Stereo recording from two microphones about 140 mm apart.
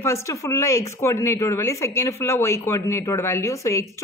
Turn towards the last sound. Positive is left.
turn(degrees=20)  # may be behind; listen again after turning